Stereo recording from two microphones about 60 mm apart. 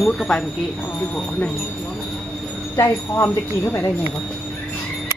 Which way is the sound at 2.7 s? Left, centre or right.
Left.